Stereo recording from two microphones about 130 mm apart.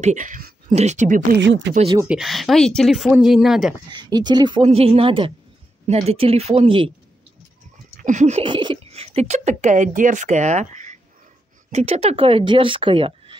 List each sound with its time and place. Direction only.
0.0 s speech: 70° right (ahead or behind)
0.7 s speech: 65° right (ahead or behind)
2.0 s speech: centre (ahead or behind)
3.9 s speech: 35° right (ahead or behind)
4.6 s speech: 50° right (ahead or behind)
8.0 s a sound: 70° right (ahead or behind)
8.4 s a sound: 40° right (ahead or behind)
8.9 s speech: 50° right (ahead or behind); by 11.0 s 70° right (ahead or behind)
11.7 s speech: 50° right (ahead or behind)